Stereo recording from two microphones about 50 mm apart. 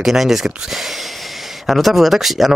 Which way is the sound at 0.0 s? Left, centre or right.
Centre.